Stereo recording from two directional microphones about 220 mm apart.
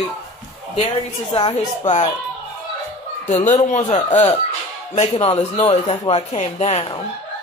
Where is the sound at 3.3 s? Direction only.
30° left (ahead or behind).